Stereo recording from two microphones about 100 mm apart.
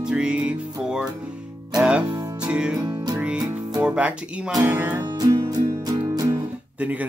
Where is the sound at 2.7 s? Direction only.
35° right (ahead or behind).